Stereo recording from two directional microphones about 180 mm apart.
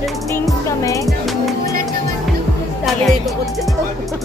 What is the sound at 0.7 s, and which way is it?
Music, 20° left (ahead or behind).